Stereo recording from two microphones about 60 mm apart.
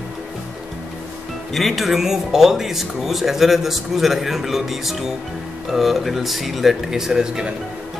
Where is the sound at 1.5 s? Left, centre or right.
Centre.